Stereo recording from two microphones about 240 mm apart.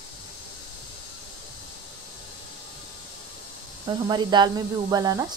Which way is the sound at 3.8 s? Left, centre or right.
Centre.